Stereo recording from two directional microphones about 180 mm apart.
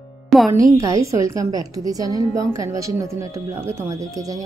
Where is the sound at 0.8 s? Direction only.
20° right (ahead or behind).